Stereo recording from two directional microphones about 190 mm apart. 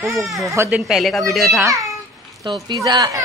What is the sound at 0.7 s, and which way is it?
Speech, 5° right (ahead or behind).